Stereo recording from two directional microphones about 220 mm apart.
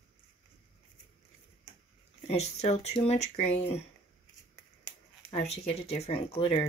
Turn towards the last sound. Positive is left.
turn(degrees=25)  # may be behind; listen again after turning